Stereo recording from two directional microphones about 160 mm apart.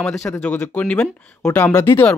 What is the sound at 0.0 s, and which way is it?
Speech, 5° left (ahead or behind).